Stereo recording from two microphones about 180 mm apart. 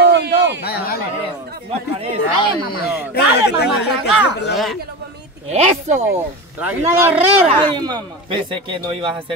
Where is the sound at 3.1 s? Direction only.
65° left (ahead or behind).